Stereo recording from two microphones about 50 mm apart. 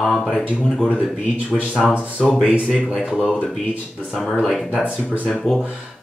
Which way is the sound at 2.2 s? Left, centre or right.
Centre.